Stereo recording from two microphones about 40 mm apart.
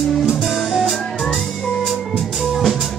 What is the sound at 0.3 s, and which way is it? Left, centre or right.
Music, centre.